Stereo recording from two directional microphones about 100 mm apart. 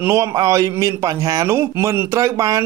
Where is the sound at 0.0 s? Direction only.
30° right (ahead or behind).